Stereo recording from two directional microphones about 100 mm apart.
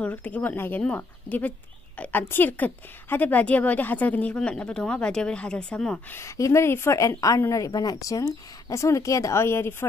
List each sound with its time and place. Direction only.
0.0 s a woman's voice: 15° left (ahead or behind)
6.0 s a woman's voice: 30° left (ahead or behind)